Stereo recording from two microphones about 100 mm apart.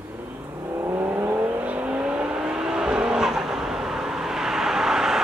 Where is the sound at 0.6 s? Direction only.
25° right (ahead or behind); by 5.2 s 5° right (ahead or behind).